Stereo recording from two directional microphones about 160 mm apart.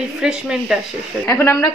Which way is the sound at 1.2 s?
15° left (ahead or behind).